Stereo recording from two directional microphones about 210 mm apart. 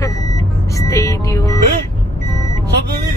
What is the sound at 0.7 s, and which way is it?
Speech, 15° left (ahead or behind).